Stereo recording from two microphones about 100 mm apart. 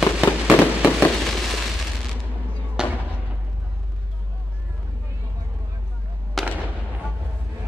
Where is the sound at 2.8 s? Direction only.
5° right (ahead or behind).